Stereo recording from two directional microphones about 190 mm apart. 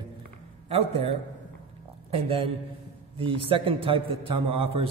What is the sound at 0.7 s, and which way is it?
Speech, 35° right (ahead or behind).